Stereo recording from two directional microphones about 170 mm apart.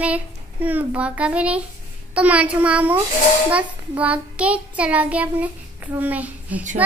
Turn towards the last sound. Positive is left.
turn(degrees=-10)  # may be behind; listen again after turning